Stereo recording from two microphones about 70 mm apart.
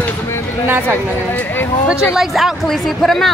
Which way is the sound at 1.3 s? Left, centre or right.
Left.